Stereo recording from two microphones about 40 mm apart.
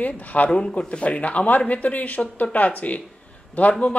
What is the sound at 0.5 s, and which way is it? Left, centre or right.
Speech, left.